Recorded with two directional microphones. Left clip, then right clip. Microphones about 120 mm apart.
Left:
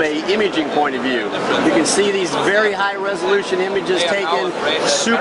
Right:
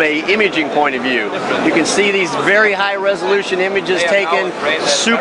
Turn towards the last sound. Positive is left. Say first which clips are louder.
# right 2 dB
turn(degrees=-15)  # may be behind; listen again after turning